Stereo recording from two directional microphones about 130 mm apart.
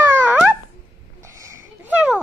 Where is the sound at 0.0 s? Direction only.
15° right (ahead or behind).